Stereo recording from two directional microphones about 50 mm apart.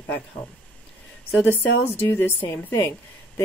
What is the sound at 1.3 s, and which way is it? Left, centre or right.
A woman's voice, left.